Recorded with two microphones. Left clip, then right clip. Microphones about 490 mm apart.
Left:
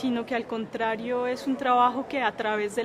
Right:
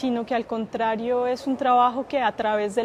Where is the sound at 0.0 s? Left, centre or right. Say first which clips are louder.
Right 4 dB; right.